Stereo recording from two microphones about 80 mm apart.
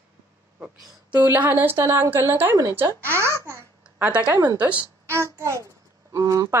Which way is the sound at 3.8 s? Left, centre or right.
Centre.